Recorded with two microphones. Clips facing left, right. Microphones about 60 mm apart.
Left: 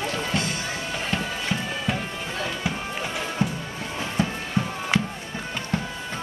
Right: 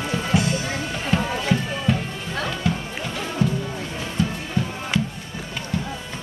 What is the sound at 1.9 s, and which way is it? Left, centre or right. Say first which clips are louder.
Music: right 5 dB; centre.